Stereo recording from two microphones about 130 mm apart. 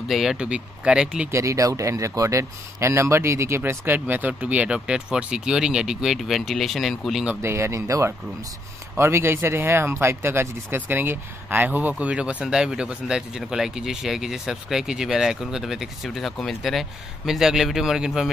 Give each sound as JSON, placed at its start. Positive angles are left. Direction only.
{"t": 0.1, "sound": "speech", "side_deg": 0}
{"t": 1.3, "sound": "speech", "side_deg": -25}
{"t": 7.4, "sound": "speech", "side_deg": -20}